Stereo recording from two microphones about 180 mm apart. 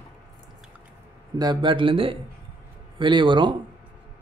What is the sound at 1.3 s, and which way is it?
Speech, 20° right (ahead or behind).